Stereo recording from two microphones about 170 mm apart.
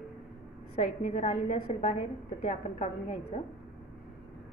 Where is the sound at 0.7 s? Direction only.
40° left (ahead or behind).